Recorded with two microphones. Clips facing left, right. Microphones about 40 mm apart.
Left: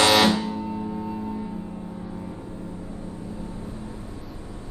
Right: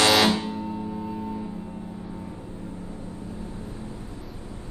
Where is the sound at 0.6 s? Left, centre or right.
Centre.